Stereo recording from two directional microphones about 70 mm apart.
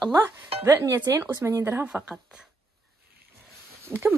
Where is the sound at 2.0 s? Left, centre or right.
Centre.